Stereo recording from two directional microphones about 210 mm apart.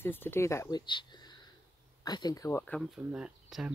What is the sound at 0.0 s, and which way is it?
Speech, 10° left (ahead or behind).